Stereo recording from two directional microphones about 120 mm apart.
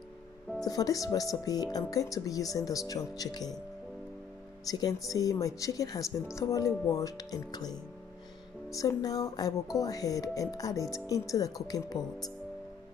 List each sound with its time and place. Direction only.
0.7 s speech: 30° left (ahead or behind)
4.6 s speech: 30° left (ahead or behind)